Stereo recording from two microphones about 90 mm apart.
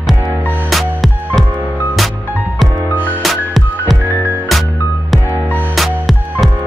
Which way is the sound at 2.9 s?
20° left (ahead or behind).